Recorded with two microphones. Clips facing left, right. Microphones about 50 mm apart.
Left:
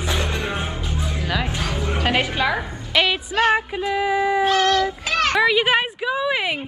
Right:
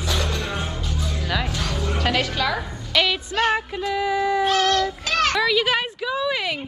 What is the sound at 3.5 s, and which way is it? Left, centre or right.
Child singing, centre.